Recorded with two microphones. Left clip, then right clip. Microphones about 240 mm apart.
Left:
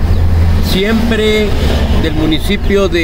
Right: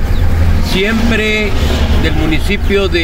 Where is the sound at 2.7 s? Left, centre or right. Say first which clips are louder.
Left 1 dB; centre.